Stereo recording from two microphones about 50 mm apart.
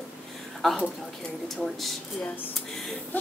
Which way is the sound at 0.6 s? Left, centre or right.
Centre.